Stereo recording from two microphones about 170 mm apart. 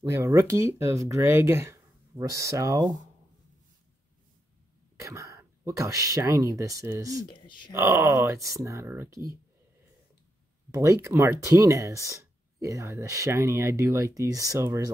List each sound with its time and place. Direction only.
0.0 s speech: 20° right (ahead or behind)
5.0 s speech: 20° right (ahead or behind)
7.2 s speech: 30° left (ahead or behind)
7.7 s speech: 15° right (ahead or behind)
10.7 s speech: 15° right (ahead or behind)